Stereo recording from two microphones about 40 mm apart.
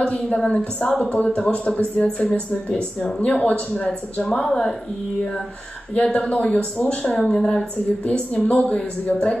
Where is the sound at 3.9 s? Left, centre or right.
Centre.